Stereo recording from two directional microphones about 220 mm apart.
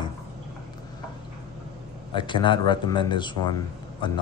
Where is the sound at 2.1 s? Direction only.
20° left (ahead or behind).